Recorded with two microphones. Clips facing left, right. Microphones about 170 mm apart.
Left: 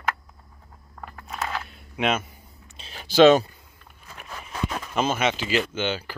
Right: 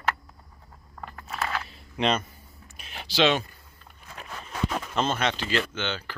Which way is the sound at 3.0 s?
45° left (ahead or behind).